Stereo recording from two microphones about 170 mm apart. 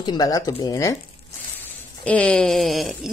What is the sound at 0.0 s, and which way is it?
Speech, 25° left (ahead or behind).